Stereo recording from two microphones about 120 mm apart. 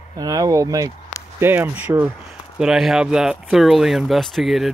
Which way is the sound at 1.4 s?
15° right (ahead or behind).